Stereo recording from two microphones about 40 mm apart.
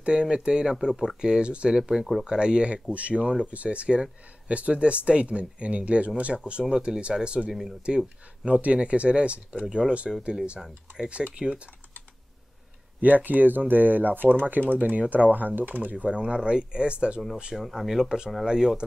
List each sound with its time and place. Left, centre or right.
0.0 s speech: right
1.9 s speech: centre
2.2 s speech: right
7.4 s speech: centre
7.8 s speech: right
11.3 s speech: right
13.0 s speech: right
17.6 s speech: centre